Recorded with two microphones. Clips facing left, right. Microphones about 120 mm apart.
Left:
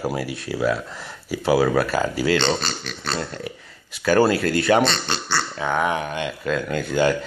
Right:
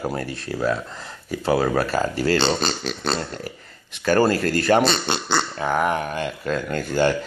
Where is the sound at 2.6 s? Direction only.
25° right (ahead or behind).